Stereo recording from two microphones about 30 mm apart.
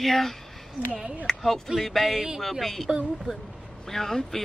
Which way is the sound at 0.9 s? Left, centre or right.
Right.